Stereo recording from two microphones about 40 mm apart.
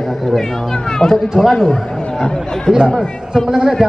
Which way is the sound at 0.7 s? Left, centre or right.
Centre.